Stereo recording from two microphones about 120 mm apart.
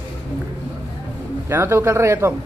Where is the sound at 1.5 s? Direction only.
20° right (ahead or behind).